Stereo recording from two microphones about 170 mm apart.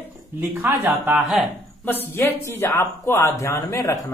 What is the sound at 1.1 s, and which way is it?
Speech, 15° right (ahead or behind).